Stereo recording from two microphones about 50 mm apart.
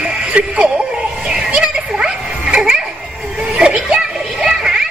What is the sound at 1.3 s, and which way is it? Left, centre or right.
Music, centre.